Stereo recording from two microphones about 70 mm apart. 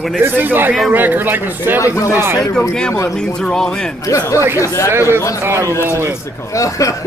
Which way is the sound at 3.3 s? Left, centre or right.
Centre.